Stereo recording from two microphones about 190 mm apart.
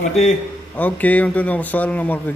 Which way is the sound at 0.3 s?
10° left (ahead or behind).